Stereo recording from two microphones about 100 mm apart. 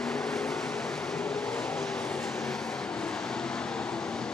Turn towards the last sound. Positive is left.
turn(degrees=5)  # may be behind; listen again after turning